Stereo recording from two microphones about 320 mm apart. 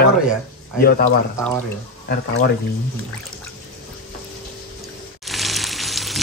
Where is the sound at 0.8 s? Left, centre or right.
Left.